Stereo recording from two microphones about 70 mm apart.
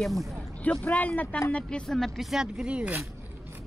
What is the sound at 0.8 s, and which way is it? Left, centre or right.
Speech, left.